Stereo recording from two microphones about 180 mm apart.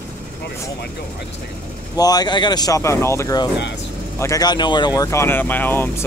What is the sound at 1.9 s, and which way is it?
Speech, 20° left (ahead or behind).